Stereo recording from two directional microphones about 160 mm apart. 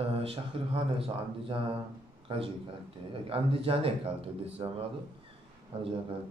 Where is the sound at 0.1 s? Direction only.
40° right (ahead or behind).